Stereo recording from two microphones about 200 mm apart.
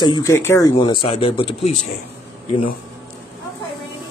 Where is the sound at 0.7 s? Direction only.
25° left (ahead or behind).